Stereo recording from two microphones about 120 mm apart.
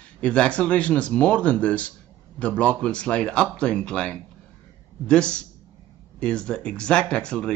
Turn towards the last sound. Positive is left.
turn(degrees=10)  # may be behind; listen again after turning